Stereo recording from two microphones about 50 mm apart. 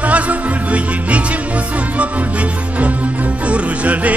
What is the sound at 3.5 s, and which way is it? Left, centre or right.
Music, right.